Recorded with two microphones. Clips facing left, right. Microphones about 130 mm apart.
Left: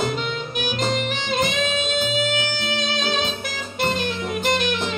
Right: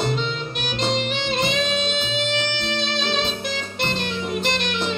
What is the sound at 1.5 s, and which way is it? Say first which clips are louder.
Music: even; centre (ahead or behind).